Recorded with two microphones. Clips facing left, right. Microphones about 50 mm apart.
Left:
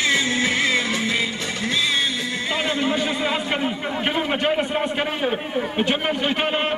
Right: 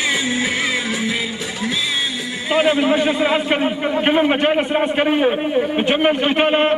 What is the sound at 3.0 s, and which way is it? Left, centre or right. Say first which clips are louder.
A man's voice: right 6 dB; centre.